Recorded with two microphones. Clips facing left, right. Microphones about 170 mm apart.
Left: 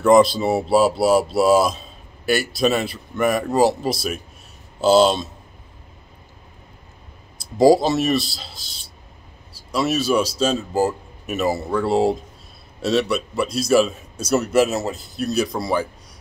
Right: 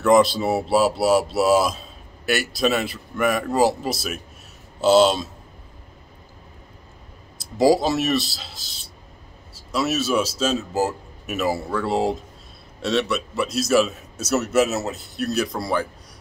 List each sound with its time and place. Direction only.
0.0 s speech: centre (ahead or behind)
7.6 s speech: centre (ahead or behind)
9.7 s a man's voice: 5° right (ahead or behind)
11.5 s speech: 25° left (ahead or behind)
11.8 s speech: centre (ahead or behind)